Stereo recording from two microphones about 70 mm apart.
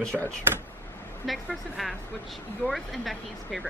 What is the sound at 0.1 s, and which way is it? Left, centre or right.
Speech, centre.